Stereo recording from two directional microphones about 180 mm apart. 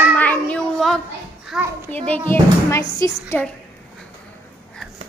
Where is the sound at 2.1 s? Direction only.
15° left (ahead or behind).